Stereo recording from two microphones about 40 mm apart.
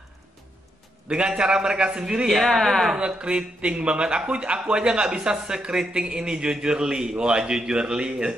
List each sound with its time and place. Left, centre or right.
1.0 s speech: right
2.4 s speech: centre
3.0 s speech: right